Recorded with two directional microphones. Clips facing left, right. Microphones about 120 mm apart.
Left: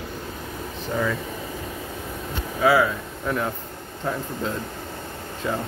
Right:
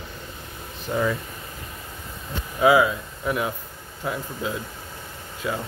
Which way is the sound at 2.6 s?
15° right (ahead or behind).